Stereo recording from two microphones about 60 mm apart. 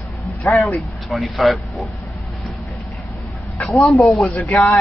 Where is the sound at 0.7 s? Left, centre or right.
Centre.